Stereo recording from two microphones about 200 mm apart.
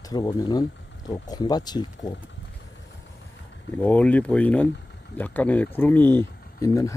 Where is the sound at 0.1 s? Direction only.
20° left (ahead or behind).